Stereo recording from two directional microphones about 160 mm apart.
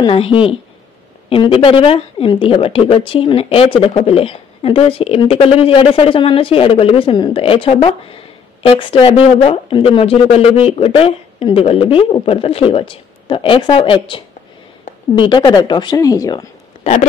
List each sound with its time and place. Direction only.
0.0 s a woman's voice: 35° left (ahead or behind)
16.8 s speech: 40° left (ahead or behind)